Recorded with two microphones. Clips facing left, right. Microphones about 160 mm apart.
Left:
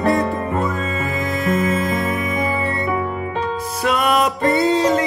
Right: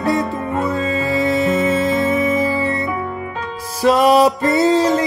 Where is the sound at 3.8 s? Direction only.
35° right (ahead or behind).